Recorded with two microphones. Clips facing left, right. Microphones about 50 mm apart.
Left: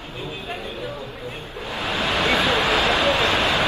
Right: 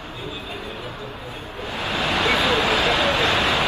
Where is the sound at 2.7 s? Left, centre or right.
Left.